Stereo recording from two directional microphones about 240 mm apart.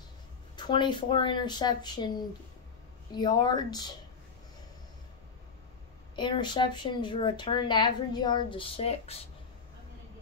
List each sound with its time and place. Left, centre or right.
0.6 s speech: centre
6.1 s speech: centre